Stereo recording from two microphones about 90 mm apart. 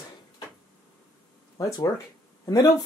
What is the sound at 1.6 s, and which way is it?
Speech, 40° left (ahead or behind).